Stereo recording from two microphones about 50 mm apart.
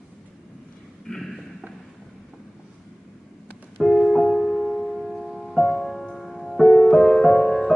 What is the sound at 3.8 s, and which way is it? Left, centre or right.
Music, centre.